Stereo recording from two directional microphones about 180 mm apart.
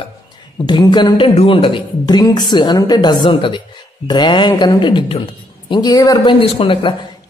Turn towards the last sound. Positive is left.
turn(degrees=30)  # may be behind; listen again after turning